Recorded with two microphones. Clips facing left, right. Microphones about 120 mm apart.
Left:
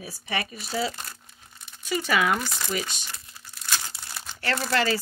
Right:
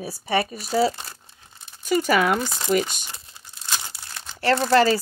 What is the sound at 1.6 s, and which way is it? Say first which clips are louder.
Crumpling: right 1 dB; 30° right (ahead or behind).